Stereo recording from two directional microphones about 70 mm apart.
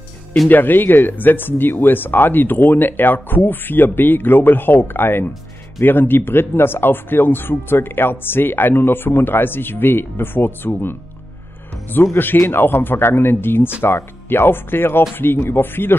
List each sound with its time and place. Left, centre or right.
0.5 s speech: left
12.2 s speech: left